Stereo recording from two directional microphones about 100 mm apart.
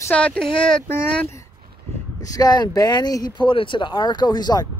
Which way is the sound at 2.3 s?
45° left (ahead or behind).